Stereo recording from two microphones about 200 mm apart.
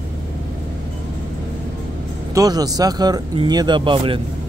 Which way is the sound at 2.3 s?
20° right (ahead or behind).